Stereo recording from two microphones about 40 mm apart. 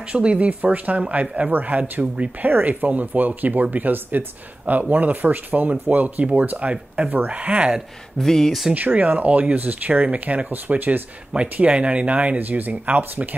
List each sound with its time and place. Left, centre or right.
0.1 s speech: right
2.4 s speech: right
8.2 s speech: centre
8.7 s speech: right
11.3 s speech: centre
11.7 s speech: right
12.4 s speech: right